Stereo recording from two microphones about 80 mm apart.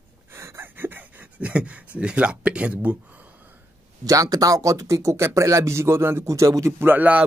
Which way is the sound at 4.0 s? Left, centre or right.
Right.